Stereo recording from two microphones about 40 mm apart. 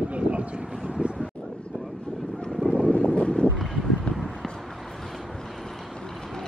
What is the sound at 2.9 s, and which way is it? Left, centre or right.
Wind noise, left.